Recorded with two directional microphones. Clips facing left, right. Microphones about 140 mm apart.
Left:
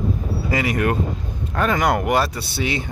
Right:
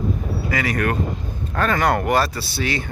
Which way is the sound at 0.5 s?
20° left (ahead or behind).